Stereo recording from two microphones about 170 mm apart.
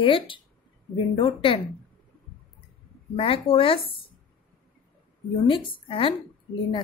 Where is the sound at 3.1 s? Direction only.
35° left (ahead or behind).